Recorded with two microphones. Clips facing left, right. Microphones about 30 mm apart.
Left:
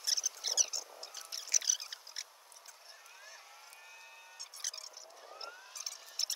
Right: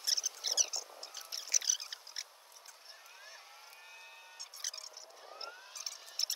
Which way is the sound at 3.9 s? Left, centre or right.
Centre.